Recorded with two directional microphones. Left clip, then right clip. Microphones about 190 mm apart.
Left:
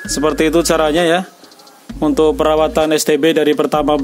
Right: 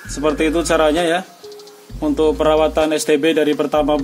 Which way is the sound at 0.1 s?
55° left (ahead or behind).